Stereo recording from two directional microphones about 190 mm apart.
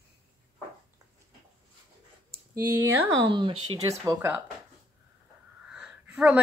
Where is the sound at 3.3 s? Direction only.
25° right (ahead or behind).